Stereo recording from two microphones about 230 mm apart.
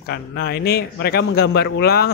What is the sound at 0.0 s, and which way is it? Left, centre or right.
Speech, left.